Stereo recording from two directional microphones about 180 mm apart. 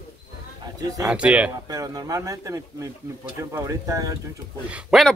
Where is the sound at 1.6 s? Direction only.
20° right (ahead or behind).